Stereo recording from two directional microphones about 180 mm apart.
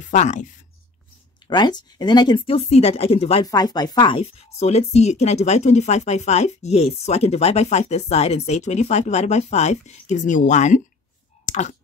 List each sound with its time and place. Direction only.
0.1 s speech: 40° left (ahead or behind)
1.5 s speech: 25° left (ahead or behind)
3.4 s speech: 20° left (ahead or behind); by 10.8 s 40° left (ahead or behind)
11.4 s a sound: 40° left (ahead or behind)